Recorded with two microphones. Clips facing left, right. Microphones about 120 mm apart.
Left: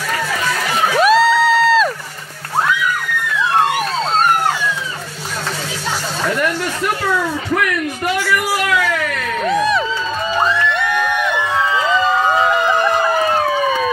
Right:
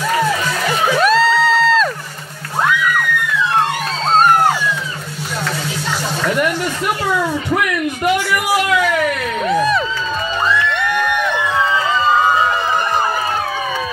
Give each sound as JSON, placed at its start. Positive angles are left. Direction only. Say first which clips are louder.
{"t": 0.9, "sound": "music", "louder": "left 3 dB", "side_deg": 5}
{"t": 8.0, "sound": "a sound", "louder": "right 2 dB", "side_deg": -20}
{"t": 9.4, "sound": "music", "louder": "even", "side_deg": 0}